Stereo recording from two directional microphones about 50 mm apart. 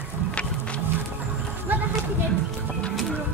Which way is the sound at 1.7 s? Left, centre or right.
Right.